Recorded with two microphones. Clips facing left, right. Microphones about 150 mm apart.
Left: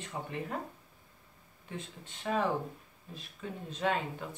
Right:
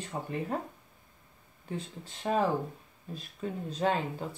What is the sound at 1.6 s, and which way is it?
Speech, 35° right (ahead or behind).